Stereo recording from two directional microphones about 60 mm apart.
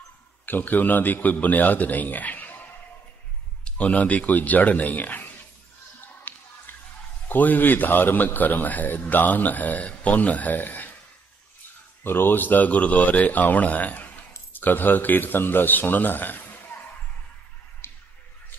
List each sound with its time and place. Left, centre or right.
0.5 s a man's voice: left
3.6 s a man's voice: left
5.9 s a sound: left
7.2 s a man's voice: left
12.0 s a man's voice: left
17.8 s a sound: left